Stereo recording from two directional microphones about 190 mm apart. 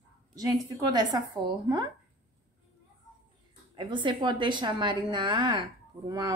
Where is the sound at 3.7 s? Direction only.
25° right (ahead or behind).